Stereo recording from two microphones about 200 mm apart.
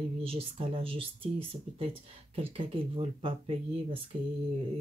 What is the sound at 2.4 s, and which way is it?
Speech, 25° right (ahead or behind).